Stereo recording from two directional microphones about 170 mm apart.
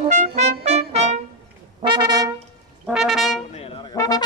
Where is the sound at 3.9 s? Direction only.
25° left (ahead or behind).